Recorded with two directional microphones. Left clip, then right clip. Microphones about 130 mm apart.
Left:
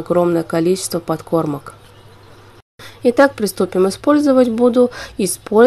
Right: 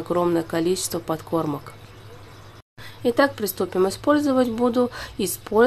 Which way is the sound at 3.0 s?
40° left (ahead or behind).